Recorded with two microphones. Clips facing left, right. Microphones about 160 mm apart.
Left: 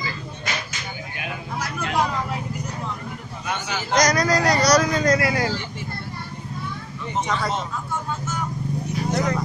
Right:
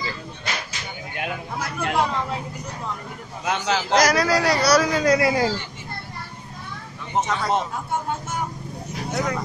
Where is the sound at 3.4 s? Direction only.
90° right.